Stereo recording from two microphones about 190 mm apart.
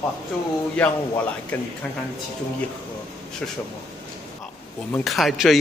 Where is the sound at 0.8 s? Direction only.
5° left (ahead or behind).